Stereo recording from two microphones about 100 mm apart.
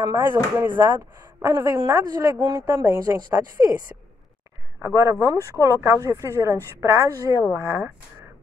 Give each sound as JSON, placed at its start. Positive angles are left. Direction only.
{"t": 0.2, "sound": "speech", "side_deg": -20}
{"t": 1.4, "sound": "speech", "side_deg": -30}
{"t": 3.2, "sound": "speech", "side_deg": -40}
{"t": 4.8, "sound": "speech", "side_deg": -30}